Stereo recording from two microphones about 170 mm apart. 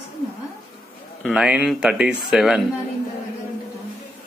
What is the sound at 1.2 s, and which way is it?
Speech, 5° right (ahead or behind).